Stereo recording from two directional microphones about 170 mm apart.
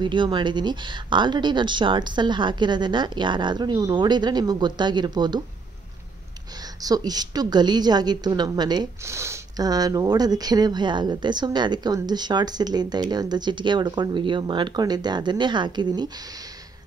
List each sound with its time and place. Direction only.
0.0 s a woman's voice: 30° right (ahead or behind)
6.6 s a woman's voice: 20° right (ahead or behind)